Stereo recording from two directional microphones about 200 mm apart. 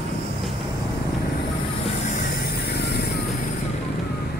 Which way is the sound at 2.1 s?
50° left (ahead or behind).